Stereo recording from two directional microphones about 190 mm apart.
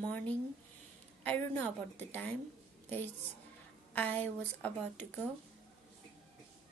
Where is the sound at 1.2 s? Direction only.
10° left (ahead or behind).